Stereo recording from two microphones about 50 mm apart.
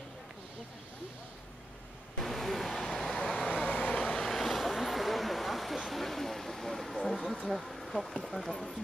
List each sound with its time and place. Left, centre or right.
2.1 s vehicle: centre
3.7 s vehicle: left
4.0 s vehicle: centre
4.3 s vehicle: centre